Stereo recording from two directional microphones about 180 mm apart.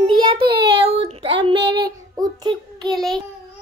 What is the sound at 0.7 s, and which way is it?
Child singing, 30° right (ahead or behind).